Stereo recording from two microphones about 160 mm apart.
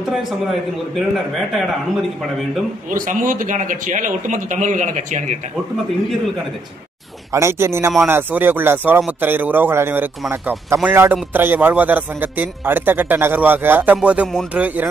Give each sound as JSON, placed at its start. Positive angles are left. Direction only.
{"t": 0.9, "sound": "a man's voice", "side_deg": 0}
{"t": 2.9, "sound": "speech", "side_deg": -55}
{"t": 7.3, "sound": "a man's voice", "side_deg": -15}